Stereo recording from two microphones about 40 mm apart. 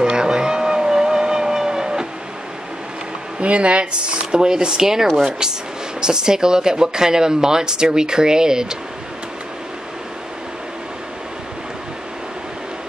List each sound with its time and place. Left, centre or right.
0.0 s vehicle: centre
3.3 s speech: right
5.0 s speech: centre
5.9 s speech: centre